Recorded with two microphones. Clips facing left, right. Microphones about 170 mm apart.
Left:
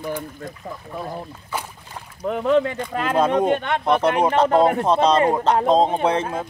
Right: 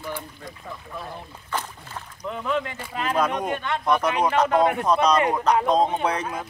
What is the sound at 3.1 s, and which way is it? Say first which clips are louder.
Speech: left 6 dB; 25° left (ahead or behind).